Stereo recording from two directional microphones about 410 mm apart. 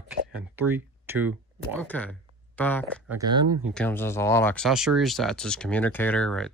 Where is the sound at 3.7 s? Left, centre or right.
Centre.